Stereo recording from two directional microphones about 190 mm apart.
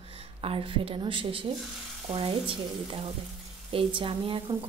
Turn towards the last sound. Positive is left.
turn(degrees=-30)  # may be behind; listen again after turning